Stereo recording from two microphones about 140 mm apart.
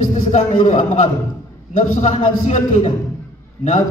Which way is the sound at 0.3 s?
60° left (ahead or behind).